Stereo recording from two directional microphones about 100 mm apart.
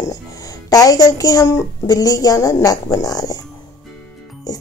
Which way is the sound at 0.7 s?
40° left (ahead or behind).